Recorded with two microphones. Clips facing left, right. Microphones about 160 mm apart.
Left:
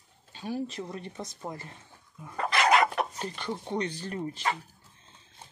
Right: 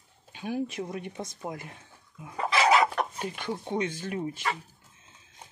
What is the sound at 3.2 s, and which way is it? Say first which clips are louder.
Speech: right 1 dB; 10° right (ahead or behind).